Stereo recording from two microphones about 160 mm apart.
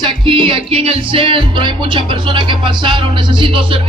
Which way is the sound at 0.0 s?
30° right (ahead or behind).